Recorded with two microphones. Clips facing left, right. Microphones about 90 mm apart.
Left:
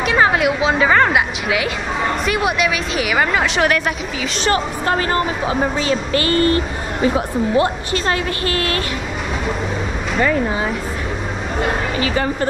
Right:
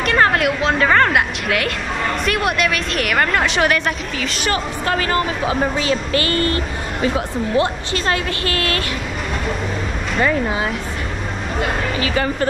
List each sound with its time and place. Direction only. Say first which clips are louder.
0.0 s a woman's voice: left 1 dB; 5° left (ahead or behind)
4.5 s speech: left 3 dB; 30° left (ahead or behind)